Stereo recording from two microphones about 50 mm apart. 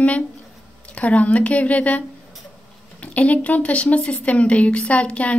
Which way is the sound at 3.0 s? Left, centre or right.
Left.